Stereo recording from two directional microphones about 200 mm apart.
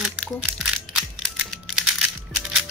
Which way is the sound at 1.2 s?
Centre (ahead or behind).